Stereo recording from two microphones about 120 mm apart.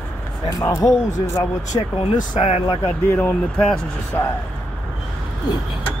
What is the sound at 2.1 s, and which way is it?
Speech, 80° left.